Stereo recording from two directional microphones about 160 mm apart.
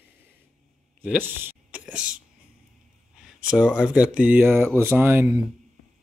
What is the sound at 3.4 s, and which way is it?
Speech, 5° right (ahead or behind).